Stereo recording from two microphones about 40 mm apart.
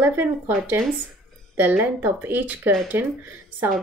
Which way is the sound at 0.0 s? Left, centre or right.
Right.